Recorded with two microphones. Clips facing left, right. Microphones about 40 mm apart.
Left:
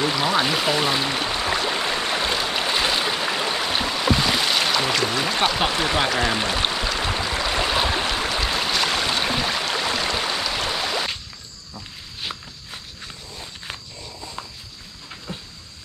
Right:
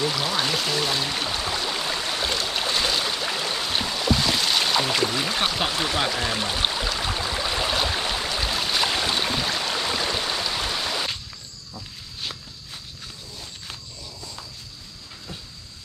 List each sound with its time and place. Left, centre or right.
0.0 s stream: left
3.7 s boat: centre
5.0 s speech: centre
7.0 s a sound: left
12.7 s walk: left
15.3 s vehicle: left